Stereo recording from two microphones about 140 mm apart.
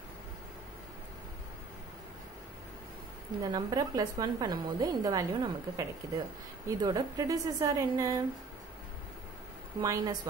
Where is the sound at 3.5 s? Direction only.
30° right (ahead or behind).